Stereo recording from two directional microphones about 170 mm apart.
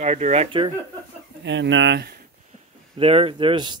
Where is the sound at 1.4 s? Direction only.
90° right.